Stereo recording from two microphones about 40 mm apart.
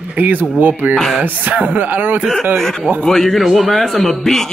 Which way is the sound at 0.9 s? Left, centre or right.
Centre.